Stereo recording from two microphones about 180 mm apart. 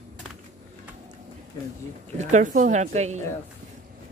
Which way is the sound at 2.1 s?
45° right (ahead or behind).